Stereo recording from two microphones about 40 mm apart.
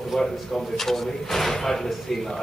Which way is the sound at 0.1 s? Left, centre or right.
Centre.